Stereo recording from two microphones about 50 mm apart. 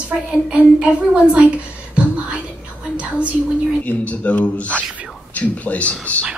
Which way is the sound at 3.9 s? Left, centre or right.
Left.